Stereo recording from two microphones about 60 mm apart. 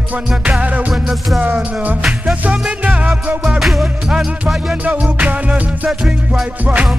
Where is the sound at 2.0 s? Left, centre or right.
Centre.